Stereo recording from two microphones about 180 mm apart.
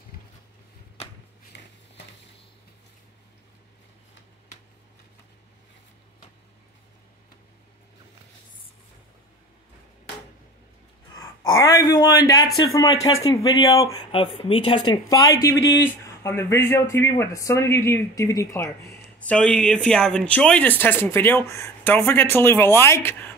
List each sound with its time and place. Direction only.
1.5 s a sound: 70° left (ahead or behind)
11.5 s speech: 20° left (ahead or behind)
14.1 s speech: 30° left (ahead or behind); by 23.3 s 15° left (ahead or behind)